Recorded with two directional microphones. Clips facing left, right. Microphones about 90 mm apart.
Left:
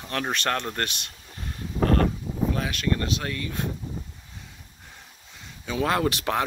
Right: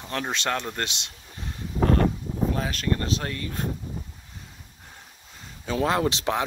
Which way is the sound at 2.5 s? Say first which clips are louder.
Even; 35° right (ahead or behind).